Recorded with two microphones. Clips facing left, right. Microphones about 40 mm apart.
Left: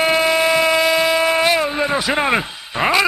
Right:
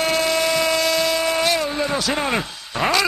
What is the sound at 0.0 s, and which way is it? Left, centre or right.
Speech, left.